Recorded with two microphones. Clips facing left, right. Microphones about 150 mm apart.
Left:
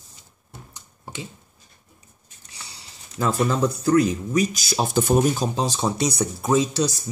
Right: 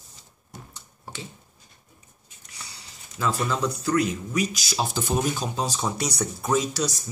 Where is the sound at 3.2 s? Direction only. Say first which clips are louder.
Left 4 dB; 45° left (ahead or behind).